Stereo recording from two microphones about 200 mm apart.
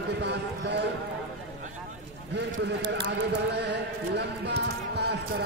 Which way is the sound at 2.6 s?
60° right (ahead or behind).